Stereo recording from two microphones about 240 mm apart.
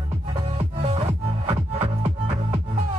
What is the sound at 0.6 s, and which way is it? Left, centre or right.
Music, right.